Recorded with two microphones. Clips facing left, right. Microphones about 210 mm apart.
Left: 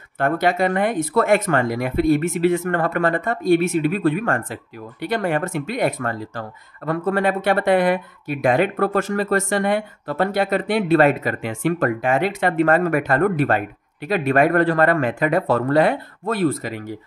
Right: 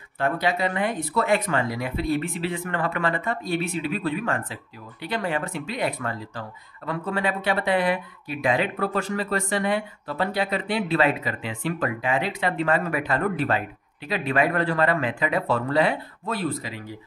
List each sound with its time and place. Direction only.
0.2 s speech: 50° left (ahead or behind)